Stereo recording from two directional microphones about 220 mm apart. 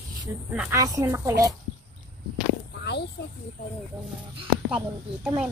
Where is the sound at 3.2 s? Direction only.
50° left (ahead or behind).